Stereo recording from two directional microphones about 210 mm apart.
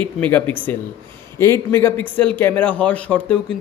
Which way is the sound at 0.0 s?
10° left (ahead or behind).